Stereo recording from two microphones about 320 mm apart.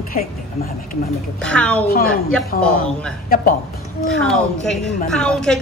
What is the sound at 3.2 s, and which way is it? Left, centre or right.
Speech, left.